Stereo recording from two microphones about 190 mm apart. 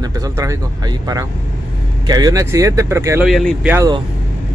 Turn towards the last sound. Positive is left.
turn(degrees=-15)  # may be behind; listen again after turning